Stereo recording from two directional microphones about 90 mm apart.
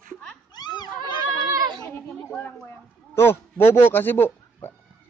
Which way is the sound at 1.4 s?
40° right (ahead or behind).